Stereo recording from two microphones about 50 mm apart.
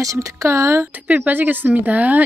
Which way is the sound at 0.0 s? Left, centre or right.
Right.